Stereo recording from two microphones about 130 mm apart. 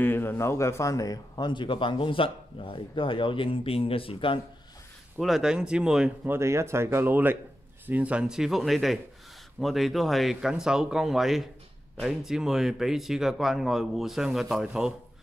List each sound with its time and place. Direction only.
0.0 s speech: 15° left (ahead or behind); by 4.4 s 45° left (ahead or behind)
5.2 s speech: centre (ahead or behind)
6.2 s speech: 20° right (ahead or behind); by 15.0 s 5° right (ahead or behind)